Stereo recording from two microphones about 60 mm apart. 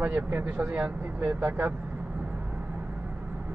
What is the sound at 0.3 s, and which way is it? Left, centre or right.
Speech, right.